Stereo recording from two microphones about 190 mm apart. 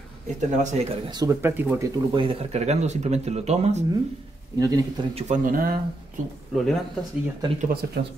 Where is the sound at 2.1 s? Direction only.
30° right (ahead or behind).